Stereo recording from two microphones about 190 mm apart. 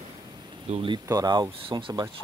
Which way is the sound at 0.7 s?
30° right (ahead or behind).